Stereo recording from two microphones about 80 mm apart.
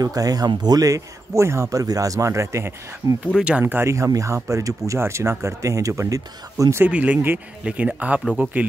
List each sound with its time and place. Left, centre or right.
0.0 s speech: right
3.3 s speech: centre
3.6 s speech: right
3.9 s speech: right
6.8 s speech: centre